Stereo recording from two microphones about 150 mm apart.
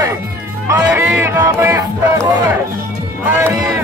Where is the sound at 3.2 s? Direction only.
15° right (ahead or behind).